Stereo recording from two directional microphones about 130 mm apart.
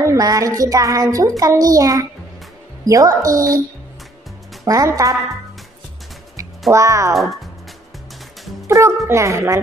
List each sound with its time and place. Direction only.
0.0 s music: 25° right (ahead or behind)
0.6 s child singing: 25° right (ahead or behind)
4.6 s child singing: 25° right (ahead or behind)
6.7 s child singing: 25° right (ahead or behind)
8.6 s music: 25° right (ahead or behind)